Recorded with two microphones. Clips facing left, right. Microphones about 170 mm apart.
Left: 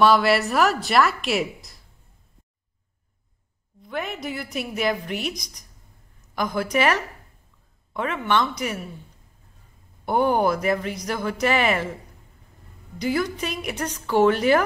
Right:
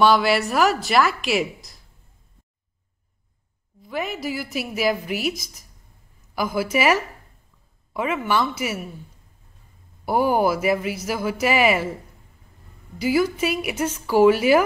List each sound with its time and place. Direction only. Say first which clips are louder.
0.0 s a woman's voice: even; centre (ahead or behind)
3.8 s a woman's voice: right 2 dB; centre (ahead or behind)
10.0 s speech: right 1 dB; 5° right (ahead or behind)
13.0 s speech: right 4 dB; 5° right (ahead or behind)